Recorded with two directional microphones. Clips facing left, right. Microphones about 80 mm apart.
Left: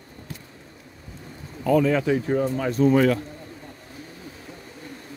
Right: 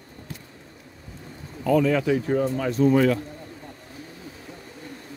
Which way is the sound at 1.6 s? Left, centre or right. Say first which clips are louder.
Left 1 dB; left.